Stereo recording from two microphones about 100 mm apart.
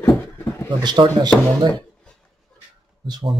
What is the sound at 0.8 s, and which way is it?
Speech, 50° right (ahead or behind).